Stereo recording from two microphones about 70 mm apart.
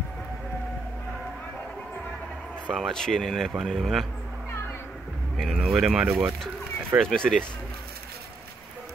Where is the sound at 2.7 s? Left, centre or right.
Centre.